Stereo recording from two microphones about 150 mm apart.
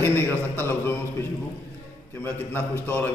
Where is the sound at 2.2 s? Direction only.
15° left (ahead or behind).